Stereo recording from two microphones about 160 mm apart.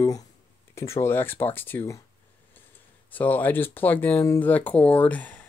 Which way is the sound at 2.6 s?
10° left (ahead or behind).